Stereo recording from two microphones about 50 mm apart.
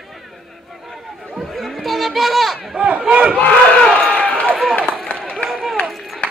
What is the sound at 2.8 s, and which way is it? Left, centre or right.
Battle cry, right.